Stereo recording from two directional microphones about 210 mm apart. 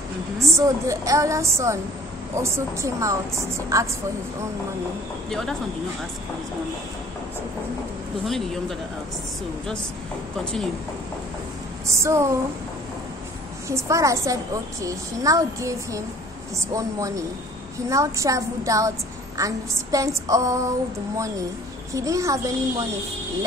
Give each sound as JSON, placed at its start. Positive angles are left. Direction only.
{"t": 0.6, "sound": "a woman's voice", "side_deg": -15}
{"t": 5.3, "sound": "speech", "side_deg": 0}
{"t": 8.3, "sound": "speech", "side_deg": 0}
{"t": 10.4, "sound": "speech", "side_deg": 5}
{"t": 11.9, "sound": "a woman's voice", "side_deg": -15}
{"t": 13.7, "sound": "a woman's voice", "side_deg": -15}
{"t": 21.9, "sound": "a woman's voice", "side_deg": -15}